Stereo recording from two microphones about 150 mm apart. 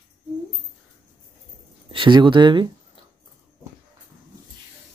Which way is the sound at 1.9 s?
35° right (ahead or behind).